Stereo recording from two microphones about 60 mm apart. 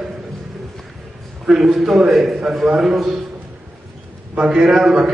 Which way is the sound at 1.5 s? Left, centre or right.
Centre.